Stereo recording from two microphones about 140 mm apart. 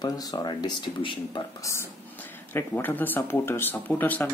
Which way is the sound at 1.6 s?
20° left (ahead or behind).